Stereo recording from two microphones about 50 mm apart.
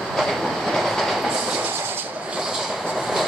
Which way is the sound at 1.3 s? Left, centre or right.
Centre.